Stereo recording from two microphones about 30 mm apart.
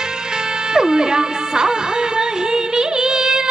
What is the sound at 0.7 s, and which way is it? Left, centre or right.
Music, right.